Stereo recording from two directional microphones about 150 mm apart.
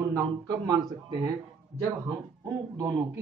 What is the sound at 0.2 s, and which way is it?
Speech, 30° right (ahead or behind).